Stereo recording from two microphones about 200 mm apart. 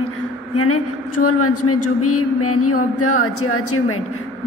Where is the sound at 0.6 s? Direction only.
90° left.